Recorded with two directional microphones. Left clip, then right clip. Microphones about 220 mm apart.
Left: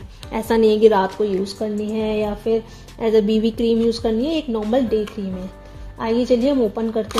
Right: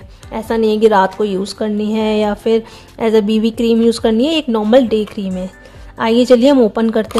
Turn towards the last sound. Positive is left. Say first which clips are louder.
# right 7 dB
turn(degrees=-30)  # may be behind; listen again after turning